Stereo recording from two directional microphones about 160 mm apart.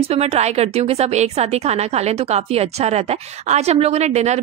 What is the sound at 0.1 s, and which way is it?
A woman's voice, 40° right (ahead or behind).